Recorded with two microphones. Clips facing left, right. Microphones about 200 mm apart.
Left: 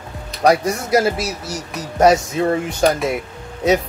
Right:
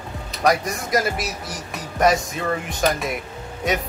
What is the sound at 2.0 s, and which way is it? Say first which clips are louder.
Speech: left 6 dB; 30° left (ahead or behind).